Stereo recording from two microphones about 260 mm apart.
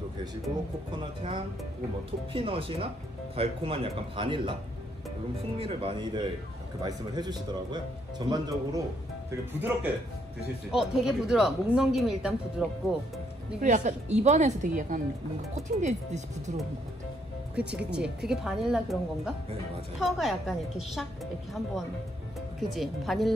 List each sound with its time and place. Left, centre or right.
0.9 s speech: centre
5.6 s speech: right; by 12.6 s centre
13.6 s speech: right
17.6 s speech: centre
22.6 s speech: centre